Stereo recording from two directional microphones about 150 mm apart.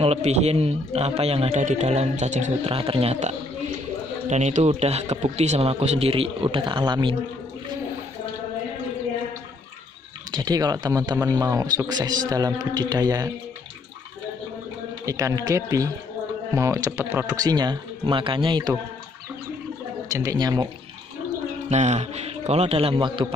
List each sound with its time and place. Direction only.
0.0 s a man's voice: 45° right (ahead or behind)
2.7 s a man's voice: 40° right (ahead or behind)
10.3 s speech: 25° right (ahead or behind)
15.0 s speech: 20° right (ahead or behind)
20.1 s speech: 20° right (ahead or behind)
21.6 s a man's voice: 50° right (ahead or behind); by 23.2 s 35° right (ahead or behind)